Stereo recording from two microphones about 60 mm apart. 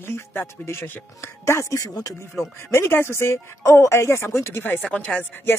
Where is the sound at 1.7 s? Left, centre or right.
Left.